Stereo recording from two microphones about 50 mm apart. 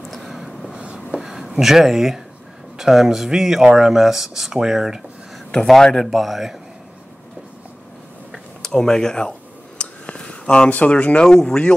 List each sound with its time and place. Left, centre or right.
0.1 s vehicle: centre
0.7 s writing: right
1.1 s a sound: centre
2.8 s speech: centre
5.7 s speech: centre
6.0 s speech: centre
8.6 s speech: centre
9.8 s a sound: centre
10.7 s speech: left
11.2 s speech: centre